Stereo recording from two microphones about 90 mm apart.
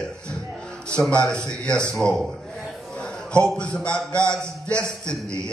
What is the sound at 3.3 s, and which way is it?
A man's voice, 10° left (ahead or behind).